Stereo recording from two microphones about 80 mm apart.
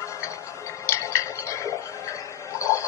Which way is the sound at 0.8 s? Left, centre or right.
Left.